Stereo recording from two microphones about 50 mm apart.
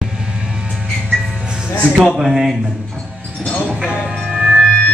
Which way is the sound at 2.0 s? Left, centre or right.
Centre.